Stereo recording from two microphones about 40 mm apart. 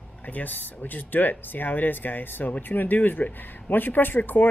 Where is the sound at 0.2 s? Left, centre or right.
Left.